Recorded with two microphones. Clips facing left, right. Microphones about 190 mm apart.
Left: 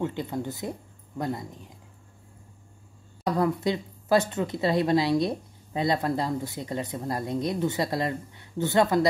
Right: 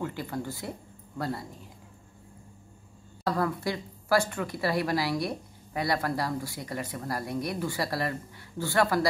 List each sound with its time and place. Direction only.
0.0 s speech: 20° left (ahead or behind)
3.3 s speech: 20° left (ahead or behind)